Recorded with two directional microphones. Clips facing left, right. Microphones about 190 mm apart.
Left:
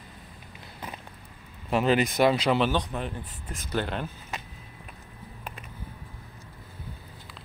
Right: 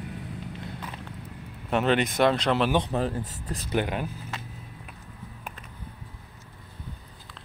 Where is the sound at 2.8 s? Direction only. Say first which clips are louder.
Right 6 dB; 40° right (ahead or behind).